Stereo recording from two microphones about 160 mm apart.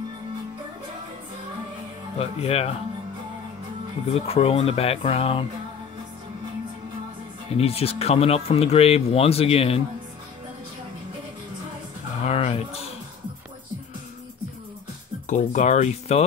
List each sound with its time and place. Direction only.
2.1 s speech: 40° left (ahead or behind)
4.1 s speech: 40° left (ahead or behind)
7.5 s speech: 40° left (ahead or behind)
12.2 s a sound: 45° left (ahead or behind)
15.2 s speech: 50° left (ahead or behind)